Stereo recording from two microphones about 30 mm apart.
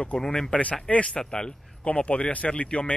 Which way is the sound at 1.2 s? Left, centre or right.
Left.